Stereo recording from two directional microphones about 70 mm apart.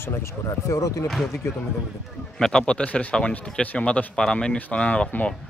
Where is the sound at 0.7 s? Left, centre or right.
Left.